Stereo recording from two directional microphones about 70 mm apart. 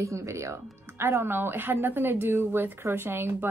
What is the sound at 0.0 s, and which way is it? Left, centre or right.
A woman's voice, right.